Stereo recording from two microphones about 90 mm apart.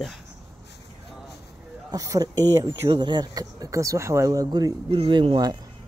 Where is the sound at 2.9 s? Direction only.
55° right (ahead or behind).